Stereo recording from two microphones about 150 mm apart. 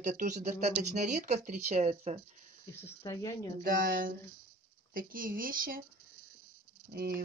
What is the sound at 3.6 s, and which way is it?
Speech, 75° right (ahead or behind).